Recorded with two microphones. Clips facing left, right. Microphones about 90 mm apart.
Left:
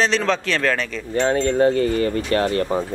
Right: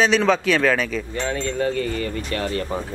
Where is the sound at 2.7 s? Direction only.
20° left (ahead or behind).